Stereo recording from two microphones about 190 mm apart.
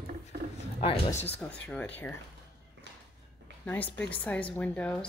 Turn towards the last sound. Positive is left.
turn(degrees=5)  # may be behind; listen again after turning